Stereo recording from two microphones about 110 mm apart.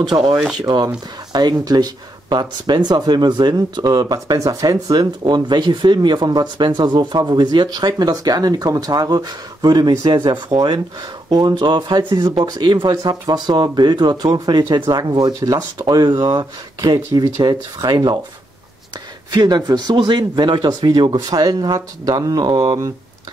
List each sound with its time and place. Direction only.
0.0 s speech: 40° right (ahead or behind)
19.3 s speech: 35° right (ahead or behind)